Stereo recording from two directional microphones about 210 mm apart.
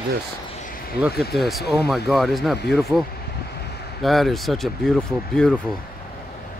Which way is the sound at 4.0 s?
Centre (ahead or behind).